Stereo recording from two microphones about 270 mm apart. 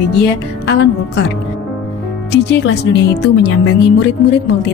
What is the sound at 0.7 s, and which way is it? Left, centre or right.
Speech, left.